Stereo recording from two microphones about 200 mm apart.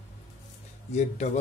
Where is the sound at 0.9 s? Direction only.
35° left (ahead or behind).